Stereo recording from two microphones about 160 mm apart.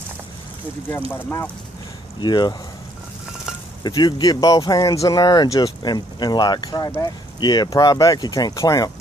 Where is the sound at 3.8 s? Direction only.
25° left (ahead or behind).